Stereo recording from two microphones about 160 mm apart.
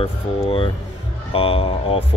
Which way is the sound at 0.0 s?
35° left (ahead or behind).